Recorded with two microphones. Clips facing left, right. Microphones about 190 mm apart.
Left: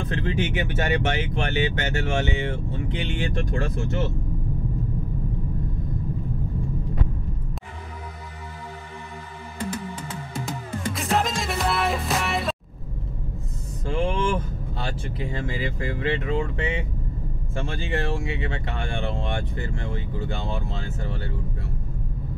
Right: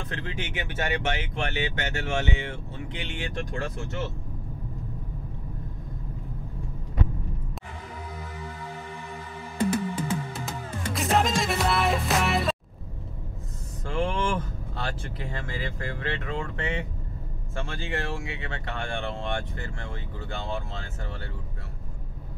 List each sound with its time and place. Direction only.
0.1 s speech: 25° left (ahead or behind)
10.9 s music: centre (ahead or behind)
13.8 s speech: 15° left (ahead or behind)